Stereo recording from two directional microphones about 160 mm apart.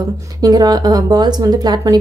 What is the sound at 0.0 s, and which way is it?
Speech, 25° right (ahead or behind).